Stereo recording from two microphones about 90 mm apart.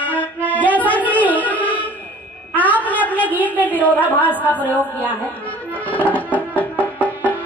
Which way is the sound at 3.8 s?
20° left (ahead or behind).